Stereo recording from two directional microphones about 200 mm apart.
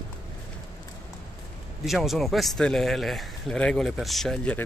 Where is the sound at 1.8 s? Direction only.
Centre (ahead or behind).